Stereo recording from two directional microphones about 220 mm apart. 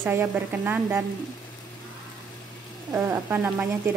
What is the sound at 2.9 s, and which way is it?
Speech, 10° right (ahead or behind).